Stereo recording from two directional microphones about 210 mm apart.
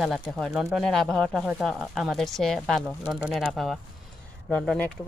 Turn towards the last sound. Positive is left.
turn(degrees=5)  # may be behind; listen again after turning